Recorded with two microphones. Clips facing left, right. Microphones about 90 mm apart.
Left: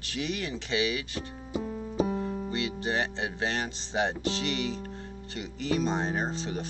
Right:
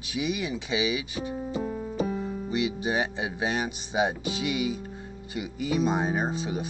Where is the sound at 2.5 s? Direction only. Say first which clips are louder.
Right 6 dB; 15° right (ahead or behind).